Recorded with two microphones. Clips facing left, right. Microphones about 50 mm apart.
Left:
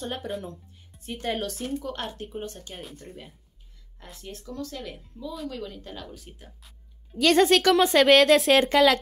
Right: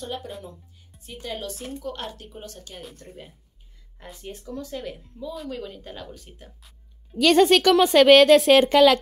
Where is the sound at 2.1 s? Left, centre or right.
Left.